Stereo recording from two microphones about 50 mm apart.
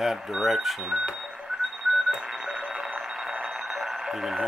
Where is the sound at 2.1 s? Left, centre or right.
Centre.